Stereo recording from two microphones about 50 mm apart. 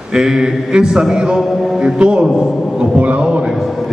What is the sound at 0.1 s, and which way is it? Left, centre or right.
A man's voice, centre.